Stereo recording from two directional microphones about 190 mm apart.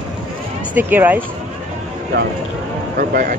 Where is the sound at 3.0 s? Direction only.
50° right (ahead or behind).